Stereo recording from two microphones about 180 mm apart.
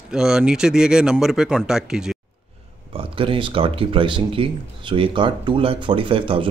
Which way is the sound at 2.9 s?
30° right (ahead or behind).